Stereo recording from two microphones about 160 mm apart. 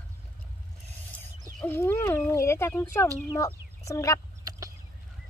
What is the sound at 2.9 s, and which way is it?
Speech, 20° left (ahead or behind).